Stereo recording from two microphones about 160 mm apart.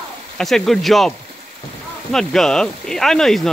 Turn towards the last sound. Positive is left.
turn(degrees=0)  # may be behind; listen again after turning